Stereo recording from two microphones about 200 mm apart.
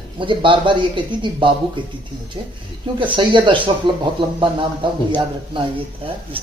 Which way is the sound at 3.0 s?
25° right (ahead or behind).